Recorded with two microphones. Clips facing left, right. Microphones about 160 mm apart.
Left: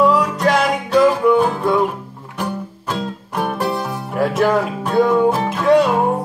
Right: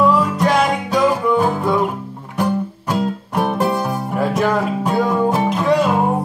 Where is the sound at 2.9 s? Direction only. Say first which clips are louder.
Right 4 dB; 15° right (ahead or behind).